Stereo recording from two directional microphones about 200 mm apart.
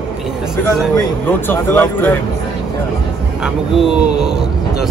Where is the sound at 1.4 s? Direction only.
10° left (ahead or behind).